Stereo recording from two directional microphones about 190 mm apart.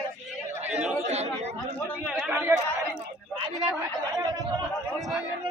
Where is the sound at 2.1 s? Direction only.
10° right (ahead or behind).